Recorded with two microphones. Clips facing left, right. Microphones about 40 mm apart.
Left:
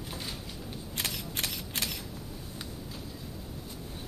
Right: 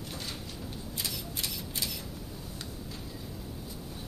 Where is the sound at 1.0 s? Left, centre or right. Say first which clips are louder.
Left 3 dB; left.